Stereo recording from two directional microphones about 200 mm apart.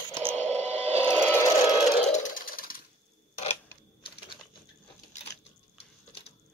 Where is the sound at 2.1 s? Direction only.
40° left (ahead or behind).